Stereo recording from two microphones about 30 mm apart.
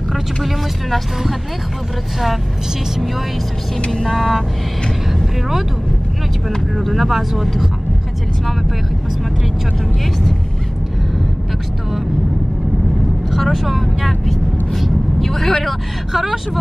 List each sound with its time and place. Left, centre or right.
0.1 s speech: centre
3.9 s speech: centre
6.9 s speech: centre
13.4 s a man's voice: centre
16.1 s speech: centre